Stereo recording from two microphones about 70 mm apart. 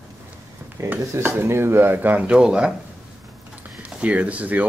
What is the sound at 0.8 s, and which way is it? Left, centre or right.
Speech, right.